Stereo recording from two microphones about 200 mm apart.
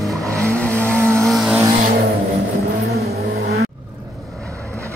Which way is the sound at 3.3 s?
50° right (ahead or behind).